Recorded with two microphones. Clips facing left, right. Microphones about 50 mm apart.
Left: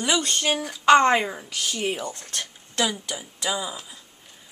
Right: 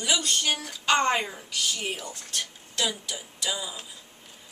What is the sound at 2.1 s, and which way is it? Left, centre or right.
Speech, left.